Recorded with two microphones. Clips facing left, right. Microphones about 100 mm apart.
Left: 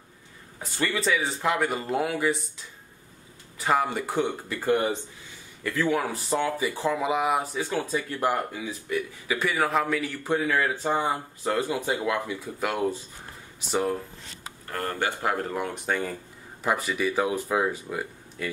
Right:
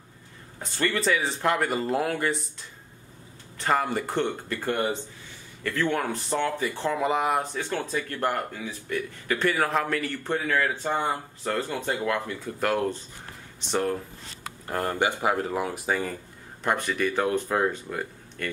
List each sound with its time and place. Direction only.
0.6 s speech: 5° left (ahead or behind)
3.5 s speech: 5° left (ahead or behind)
14.7 s speech: 20° right (ahead or behind)
15.3 s speech: 5° right (ahead or behind)